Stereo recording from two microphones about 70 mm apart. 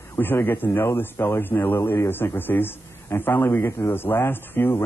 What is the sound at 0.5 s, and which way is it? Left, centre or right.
A man's voice, left.